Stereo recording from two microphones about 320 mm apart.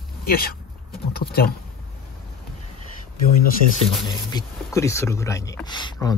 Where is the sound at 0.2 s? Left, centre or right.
Left.